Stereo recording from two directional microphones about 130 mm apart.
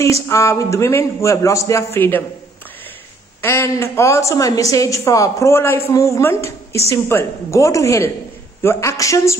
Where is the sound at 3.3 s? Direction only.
20° left (ahead or behind).